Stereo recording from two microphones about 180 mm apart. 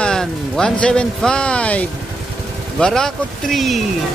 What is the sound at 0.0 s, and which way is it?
Speech, 5° left (ahead or behind).